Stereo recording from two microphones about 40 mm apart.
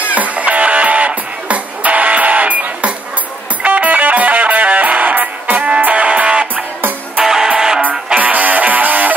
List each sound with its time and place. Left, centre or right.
0.0 s music: right
7.2 s music: centre
8.1 s music: right